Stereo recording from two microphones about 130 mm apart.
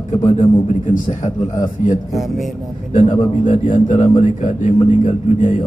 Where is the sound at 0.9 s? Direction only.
70° left (ahead or behind).